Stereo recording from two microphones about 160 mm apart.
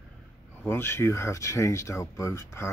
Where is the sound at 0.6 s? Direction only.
15° left (ahead or behind).